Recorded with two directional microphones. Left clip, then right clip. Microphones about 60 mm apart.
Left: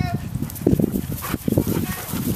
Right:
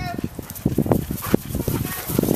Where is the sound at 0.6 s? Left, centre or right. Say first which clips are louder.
Even; centre.